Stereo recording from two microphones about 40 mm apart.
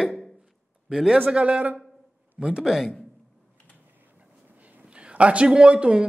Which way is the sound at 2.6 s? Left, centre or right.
Centre.